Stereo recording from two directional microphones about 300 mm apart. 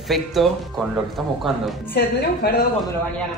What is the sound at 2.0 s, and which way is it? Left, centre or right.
Speech, left.